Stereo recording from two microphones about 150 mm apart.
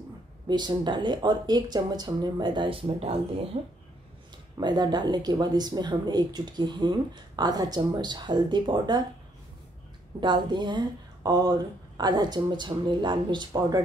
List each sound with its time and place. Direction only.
0.5 s a woman's voice: 30° right (ahead or behind)
4.6 s speech: 30° right (ahead or behind)
10.2 s a woman's voice: 30° right (ahead or behind)